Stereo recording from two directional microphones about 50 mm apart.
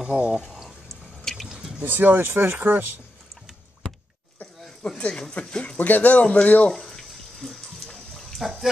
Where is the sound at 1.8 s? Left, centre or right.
Right.